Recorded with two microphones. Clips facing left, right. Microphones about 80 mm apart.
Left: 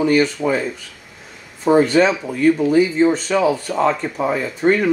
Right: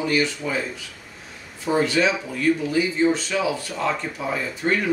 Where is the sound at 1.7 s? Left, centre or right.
Left.